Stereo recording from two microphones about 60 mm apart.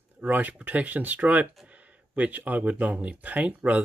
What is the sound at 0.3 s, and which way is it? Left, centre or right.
Speech, right.